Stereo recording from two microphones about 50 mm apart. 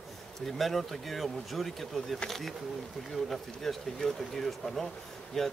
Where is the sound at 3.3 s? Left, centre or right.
Centre.